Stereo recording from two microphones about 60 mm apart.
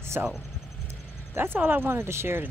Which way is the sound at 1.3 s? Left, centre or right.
Right.